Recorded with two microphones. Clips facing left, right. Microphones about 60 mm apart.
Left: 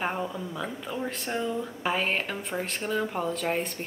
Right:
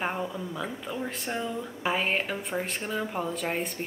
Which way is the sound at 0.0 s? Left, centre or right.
Centre.